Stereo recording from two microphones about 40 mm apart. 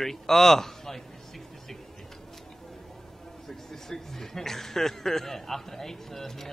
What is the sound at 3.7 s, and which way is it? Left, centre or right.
Speech, centre.